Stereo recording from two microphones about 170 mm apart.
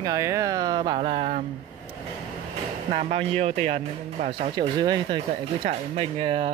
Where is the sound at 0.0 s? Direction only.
20° right (ahead or behind).